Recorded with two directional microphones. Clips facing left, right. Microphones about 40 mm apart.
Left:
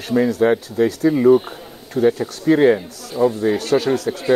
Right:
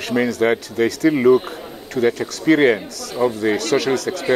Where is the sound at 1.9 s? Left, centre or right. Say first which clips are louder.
Left 2 dB; right.